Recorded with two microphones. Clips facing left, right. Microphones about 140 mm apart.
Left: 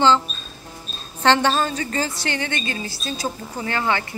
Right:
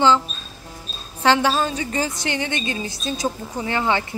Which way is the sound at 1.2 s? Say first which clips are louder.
Even; 5° right (ahead or behind).